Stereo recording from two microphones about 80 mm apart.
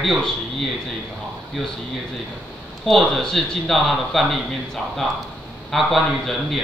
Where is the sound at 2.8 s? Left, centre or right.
Centre.